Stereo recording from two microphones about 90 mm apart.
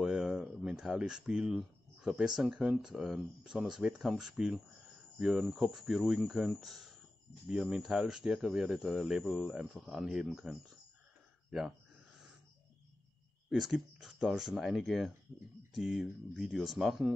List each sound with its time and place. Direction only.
0.0 s speech: 5° right (ahead or behind)
13.5 s speech: centre (ahead or behind)